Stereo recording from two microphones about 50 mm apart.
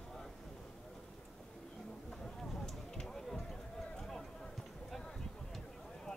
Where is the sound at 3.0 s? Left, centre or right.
Centre.